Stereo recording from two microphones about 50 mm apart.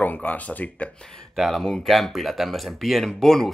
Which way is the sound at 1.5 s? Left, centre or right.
Centre.